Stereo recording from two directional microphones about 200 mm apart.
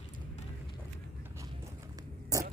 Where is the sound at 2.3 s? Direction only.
15° right (ahead or behind).